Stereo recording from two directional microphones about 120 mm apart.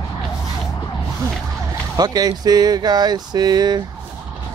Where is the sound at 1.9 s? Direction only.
35° right (ahead or behind).